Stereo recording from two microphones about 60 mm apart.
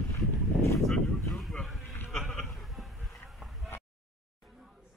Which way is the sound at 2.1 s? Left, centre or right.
Centre.